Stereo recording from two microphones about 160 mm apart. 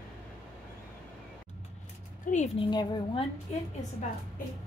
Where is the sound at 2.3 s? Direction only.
55° left (ahead or behind).